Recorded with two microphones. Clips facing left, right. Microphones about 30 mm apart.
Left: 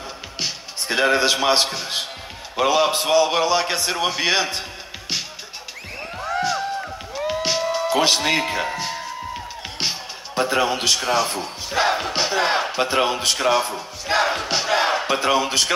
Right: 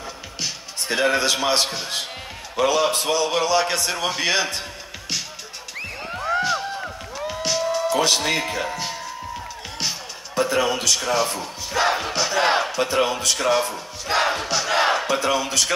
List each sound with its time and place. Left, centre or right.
0.4 s a man's voice: centre
6.1 s a sound: centre
7.2 s music: centre
11.2 s speech: left
12.0 s battle cry: left
12.7 s speech: left; by 14.2 s centre
14.5 s battle cry: left
15.0 s speech: left